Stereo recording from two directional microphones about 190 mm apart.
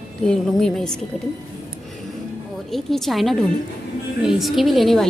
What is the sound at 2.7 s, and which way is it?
A woman's voice, centre (ahead or behind).